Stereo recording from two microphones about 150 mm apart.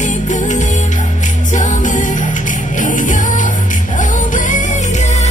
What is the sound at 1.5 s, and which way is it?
Music, 55° left (ahead or behind).